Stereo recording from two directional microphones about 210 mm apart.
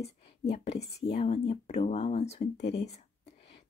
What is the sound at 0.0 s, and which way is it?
Whispering, 30° left (ahead or behind).